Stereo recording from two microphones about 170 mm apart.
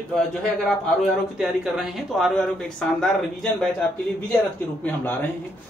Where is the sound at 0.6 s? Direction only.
Centre (ahead or behind).